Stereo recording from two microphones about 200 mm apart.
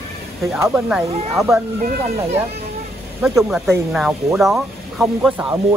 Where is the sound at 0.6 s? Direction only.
10° right (ahead or behind).